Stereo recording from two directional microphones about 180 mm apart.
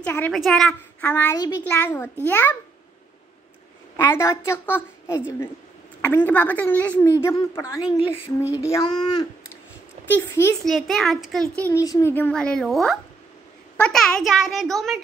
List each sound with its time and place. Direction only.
0.0 s a woman's voice: 10° left (ahead or behind)
3.9 s a woman's voice: 10° left (ahead or behind)
10.1 s a woman's voice: 10° left (ahead or behind)
10.6 s a child's voice: centre (ahead or behind)
11.5 s a woman's voice: 15° left (ahead or behind)